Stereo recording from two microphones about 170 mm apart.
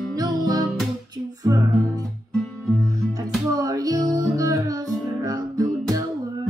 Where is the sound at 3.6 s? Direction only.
20° right (ahead or behind).